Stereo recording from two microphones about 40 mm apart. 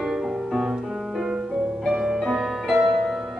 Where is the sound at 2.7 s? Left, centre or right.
Centre.